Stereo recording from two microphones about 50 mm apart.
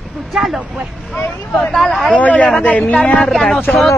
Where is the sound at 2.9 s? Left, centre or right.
Left.